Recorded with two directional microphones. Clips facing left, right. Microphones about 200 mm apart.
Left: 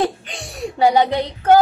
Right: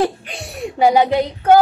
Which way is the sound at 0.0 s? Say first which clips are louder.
Right 2 dB; 5° right (ahead or behind).